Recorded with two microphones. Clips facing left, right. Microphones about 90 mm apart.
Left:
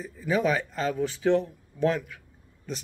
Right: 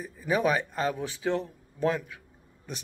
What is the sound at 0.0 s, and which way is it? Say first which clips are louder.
Speech: left 1 dB; 15° right (ahead or behind).